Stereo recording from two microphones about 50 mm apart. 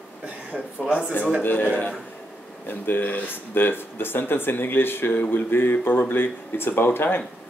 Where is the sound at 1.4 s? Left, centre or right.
Left.